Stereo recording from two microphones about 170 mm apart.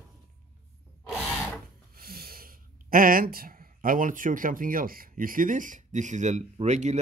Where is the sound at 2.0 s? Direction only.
60° right (ahead or behind).